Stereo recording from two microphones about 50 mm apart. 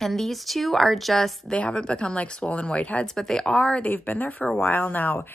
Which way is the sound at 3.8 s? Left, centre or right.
Left.